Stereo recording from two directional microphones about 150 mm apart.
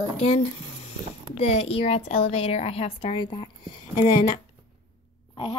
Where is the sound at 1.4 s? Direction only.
45° left (ahead or behind).